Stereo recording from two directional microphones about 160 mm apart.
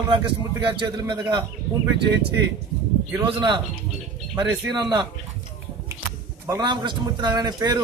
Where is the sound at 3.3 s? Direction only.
30° right (ahead or behind).